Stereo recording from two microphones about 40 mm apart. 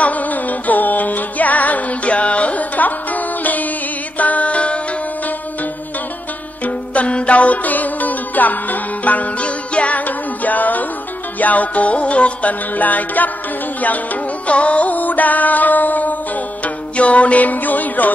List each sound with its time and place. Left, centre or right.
0.0 s music: left
6.6 s music: left
14.5 s music: left
16.6 s music: left